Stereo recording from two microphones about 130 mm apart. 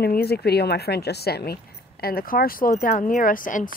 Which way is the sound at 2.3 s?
90° left.